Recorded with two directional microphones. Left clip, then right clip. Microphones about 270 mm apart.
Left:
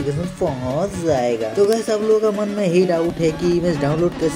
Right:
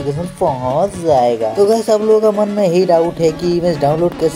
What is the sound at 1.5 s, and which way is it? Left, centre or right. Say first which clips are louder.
Speech: right 2 dB; centre.